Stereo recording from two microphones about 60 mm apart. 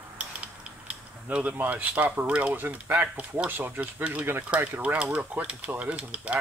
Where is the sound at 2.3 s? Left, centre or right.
Right.